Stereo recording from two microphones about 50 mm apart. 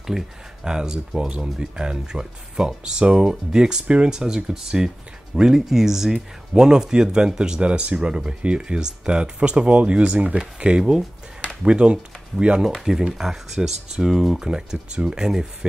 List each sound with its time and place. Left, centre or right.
0.7 s speech: centre
14.5 s speech: centre